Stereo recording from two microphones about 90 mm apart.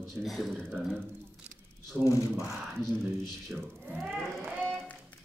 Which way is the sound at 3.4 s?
5° right (ahead or behind).